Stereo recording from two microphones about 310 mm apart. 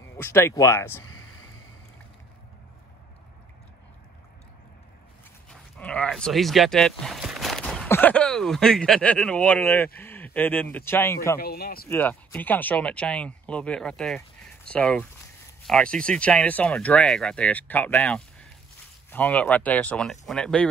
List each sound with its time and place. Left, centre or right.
0.0 s speech: centre
5.5 s speech: centre
11.3 s a man's voice: left
11.9 s speech: centre